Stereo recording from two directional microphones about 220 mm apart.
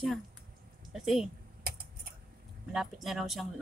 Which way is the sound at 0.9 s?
Centre (ahead or behind).